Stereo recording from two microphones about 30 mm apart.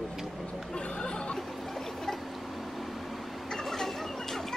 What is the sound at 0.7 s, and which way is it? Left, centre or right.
Speech, left.